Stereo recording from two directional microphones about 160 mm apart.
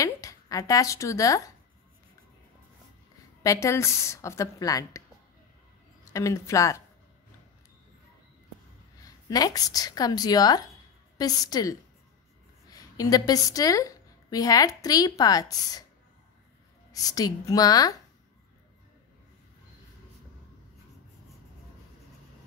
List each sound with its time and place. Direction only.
0.0 s speech: 20° left (ahead or behind)
3.4 s speech: 20° left (ahead or behind)
6.1 s a woman's voice: 20° left (ahead or behind)
9.0 s a woman's voice: 25° left (ahead or behind)
16.9 s a woman's voice: 20° left (ahead or behind)